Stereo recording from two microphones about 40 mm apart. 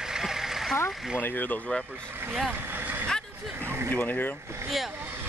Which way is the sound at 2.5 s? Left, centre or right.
Right.